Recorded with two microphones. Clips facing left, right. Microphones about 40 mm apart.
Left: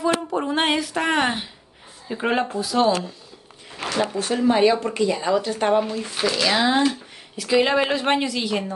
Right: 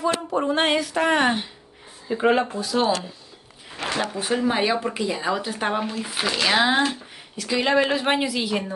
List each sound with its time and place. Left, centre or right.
0.0 s speech: centre
4.1 s speech: centre
7.3 s speech: centre